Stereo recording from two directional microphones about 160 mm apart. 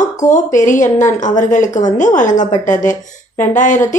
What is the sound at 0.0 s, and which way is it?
A woman's voice, 50° left (ahead or behind).